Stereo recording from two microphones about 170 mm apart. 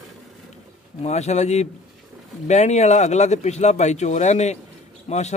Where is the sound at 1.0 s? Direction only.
40° left (ahead or behind).